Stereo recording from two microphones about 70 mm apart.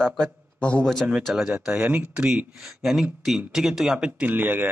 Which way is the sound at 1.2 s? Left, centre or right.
Centre.